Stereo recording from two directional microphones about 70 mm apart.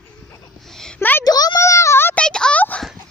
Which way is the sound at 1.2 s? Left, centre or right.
Left.